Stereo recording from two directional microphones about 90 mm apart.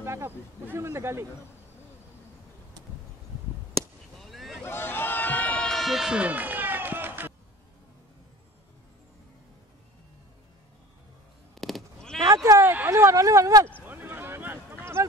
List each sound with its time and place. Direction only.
0.0 s speech: 30° right (ahead or behind)
4.2 s vehicle: centre (ahead or behind)
4.6 s run: 25° left (ahead or behind)
5.7 s run: centre (ahead or behind); by 7.3 s 25° right (ahead or behind)
11.5 s sheep: centre (ahead or behind)
12.4 s a sound: 35° right (ahead or behind)
13.8 s a sound: 20° right (ahead or behind)